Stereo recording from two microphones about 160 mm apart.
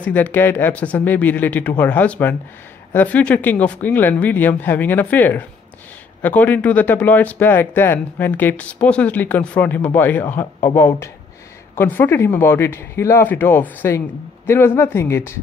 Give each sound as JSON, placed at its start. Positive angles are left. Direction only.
{"t": 0.0, "sound": "speech", "side_deg": 10}